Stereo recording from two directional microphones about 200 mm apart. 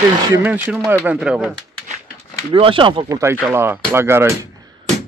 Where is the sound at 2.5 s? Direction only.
25° right (ahead or behind).